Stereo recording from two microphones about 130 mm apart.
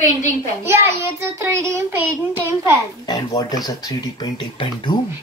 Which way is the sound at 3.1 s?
30° left (ahead or behind).